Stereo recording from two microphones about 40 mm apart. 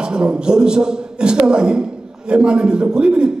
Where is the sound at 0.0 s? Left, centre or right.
Right.